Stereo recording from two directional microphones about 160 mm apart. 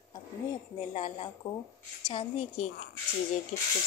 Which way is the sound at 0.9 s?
35° left (ahead or behind).